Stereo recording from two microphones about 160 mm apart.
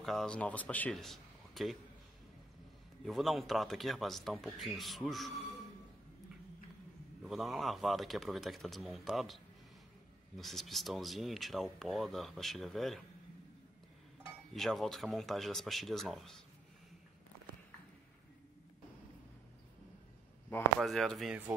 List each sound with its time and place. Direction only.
0.0 s speech: centre (ahead or behind)
3.1 s speech: centre (ahead or behind)
7.2 s speech: centre (ahead or behind)
14.5 s speech: centre (ahead or behind)
20.8 s speech: centre (ahead or behind)